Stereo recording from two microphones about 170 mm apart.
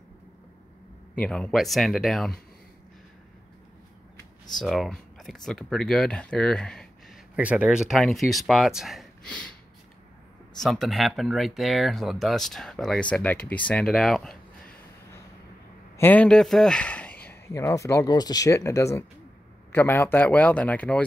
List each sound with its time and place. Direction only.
1.1 s speech: 5° left (ahead or behind)
4.6 s speech: centre (ahead or behind)
7.3 s speech: 5° right (ahead or behind)
10.6 s speech: centre (ahead or behind)
16.0 s speech: 10° left (ahead or behind)